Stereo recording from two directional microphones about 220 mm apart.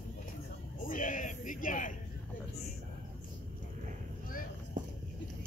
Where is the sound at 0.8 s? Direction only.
35° left (ahead or behind).